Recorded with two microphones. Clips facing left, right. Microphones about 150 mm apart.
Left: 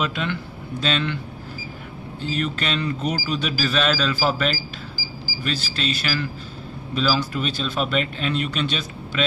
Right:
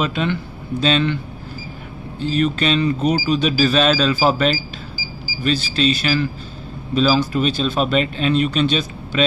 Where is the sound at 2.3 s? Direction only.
25° right (ahead or behind).